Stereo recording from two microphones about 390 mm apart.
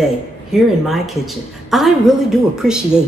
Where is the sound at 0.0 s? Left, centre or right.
Centre.